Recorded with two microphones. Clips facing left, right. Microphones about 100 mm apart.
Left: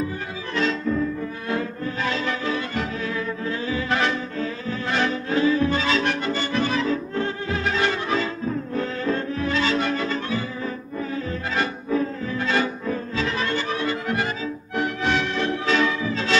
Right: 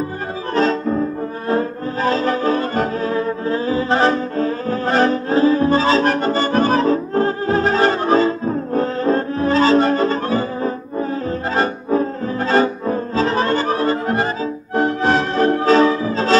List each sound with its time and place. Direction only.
0.6 s music: 40° right (ahead or behind)
1.5 s brass instrument: 40° right (ahead or behind)
11.5 s music: 40° right (ahead or behind)